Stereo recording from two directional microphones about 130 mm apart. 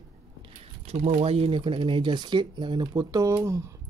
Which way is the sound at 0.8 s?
55° right (ahead or behind).